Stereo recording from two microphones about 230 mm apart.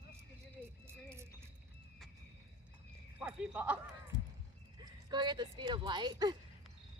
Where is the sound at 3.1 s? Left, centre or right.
Centre.